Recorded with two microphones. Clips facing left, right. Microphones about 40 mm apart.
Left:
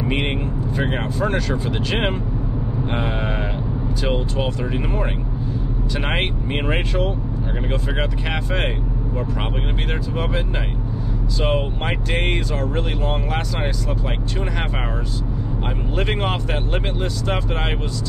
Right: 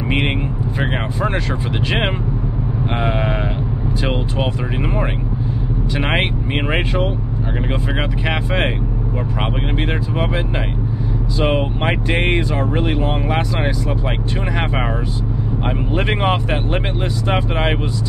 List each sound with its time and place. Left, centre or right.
0.7 s speech: centre
5.9 s speech: centre
11.4 s speech: centre
16.0 s speech: centre